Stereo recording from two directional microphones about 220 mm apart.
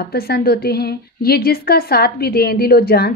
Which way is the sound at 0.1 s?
45° left (ahead or behind).